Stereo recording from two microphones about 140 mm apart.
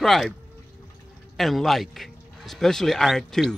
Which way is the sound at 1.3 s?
Centre (ahead or behind).